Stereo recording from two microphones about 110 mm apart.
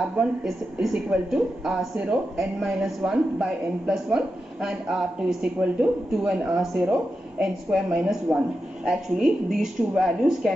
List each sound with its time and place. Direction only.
0.2 s speech: 5° right (ahead or behind)